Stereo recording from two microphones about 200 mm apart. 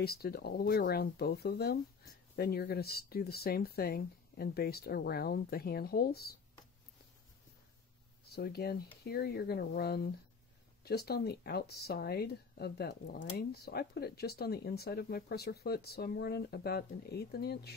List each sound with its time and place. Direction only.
0.0 s speech: 50° left (ahead or behind)
8.3 s speech: 50° left (ahead or behind)